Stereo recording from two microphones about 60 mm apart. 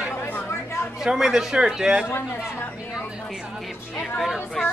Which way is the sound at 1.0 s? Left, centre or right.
Centre.